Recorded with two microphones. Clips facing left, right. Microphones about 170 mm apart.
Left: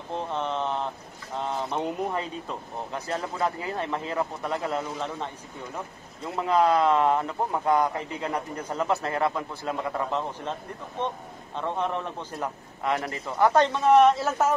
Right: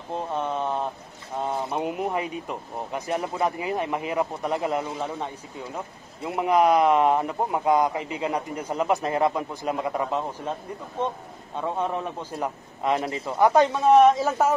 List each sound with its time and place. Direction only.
0.1 s a sound: 10° right (ahead or behind)
1.7 s a man's voice: 10° right (ahead or behind)
6.2 s a man's voice: 20° right (ahead or behind)
11.5 s a man's voice: 10° right (ahead or behind)